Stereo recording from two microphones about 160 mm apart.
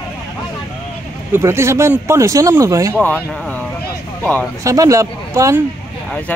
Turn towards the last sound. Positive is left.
turn(degrees=-20)  # may be behind; listen again after turning